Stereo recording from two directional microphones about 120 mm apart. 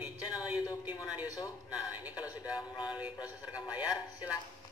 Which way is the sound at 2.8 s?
10° right (ahead or behind).